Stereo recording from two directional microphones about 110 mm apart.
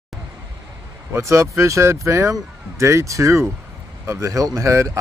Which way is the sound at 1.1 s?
25° right (ahead or behind).